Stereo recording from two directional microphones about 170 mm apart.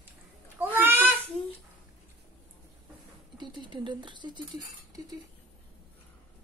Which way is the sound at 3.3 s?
25° right (ahead or behind).